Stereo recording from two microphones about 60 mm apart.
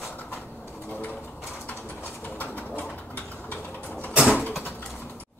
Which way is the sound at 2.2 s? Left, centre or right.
Left.